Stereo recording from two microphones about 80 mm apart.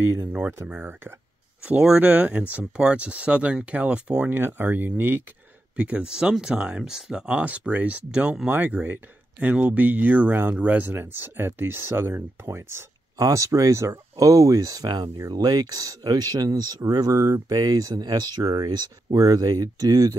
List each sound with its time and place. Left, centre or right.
0.0 s speech: right
0.7 s speech: right
1.6 s speech: centre
4.3 s speech: right
5.8 s speech: centre
8.5 s speech: right